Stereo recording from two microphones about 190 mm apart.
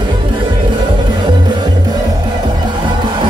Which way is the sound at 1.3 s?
25° right (ahead or behind).